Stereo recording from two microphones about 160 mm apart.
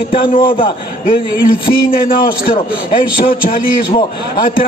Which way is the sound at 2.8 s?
35° left (ahead or behind).